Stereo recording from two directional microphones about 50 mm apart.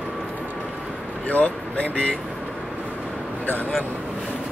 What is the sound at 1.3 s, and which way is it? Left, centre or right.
Speech, left.